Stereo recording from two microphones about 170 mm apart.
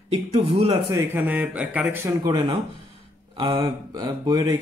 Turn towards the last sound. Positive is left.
turn(degrees=-20)  # may be behind; listen again after turning